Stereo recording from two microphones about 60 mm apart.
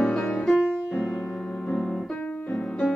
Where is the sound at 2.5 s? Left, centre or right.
Left.